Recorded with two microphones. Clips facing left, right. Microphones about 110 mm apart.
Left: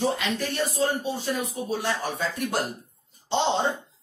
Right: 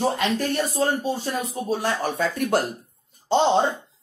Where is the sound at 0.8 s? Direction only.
50° right (ahead or behind).